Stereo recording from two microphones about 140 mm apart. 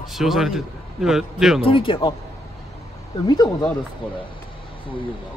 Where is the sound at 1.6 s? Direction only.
40° left (ahead or behind).